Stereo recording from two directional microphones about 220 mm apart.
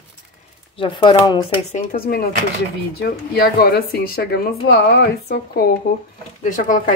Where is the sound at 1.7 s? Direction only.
40° left (ahead or behind).